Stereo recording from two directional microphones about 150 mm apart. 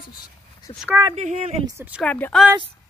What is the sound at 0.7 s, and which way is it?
Speech, 35° left (ahead or behind).